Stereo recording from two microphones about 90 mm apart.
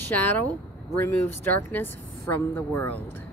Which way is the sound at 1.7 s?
25° left (ahead or behind).